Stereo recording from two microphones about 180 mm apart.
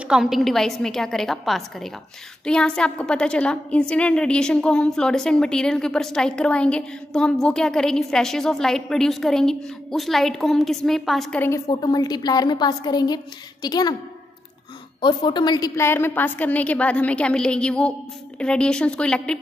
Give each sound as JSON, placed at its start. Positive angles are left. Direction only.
{"t": 0.1, "sound": "a woman's voice", "side_deg": 0}
{"t": 11.7, "sound": "a woman's voice", "side_deg": 25}
{"t": 15.0, "sound": "a woman's voice", "side_deg": 25}